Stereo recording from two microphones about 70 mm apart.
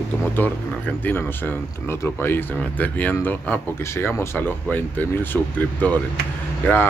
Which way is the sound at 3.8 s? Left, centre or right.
Left.